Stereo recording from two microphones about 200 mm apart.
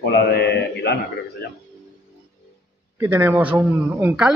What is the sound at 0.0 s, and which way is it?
Mantra, 55° left (ahead or behind).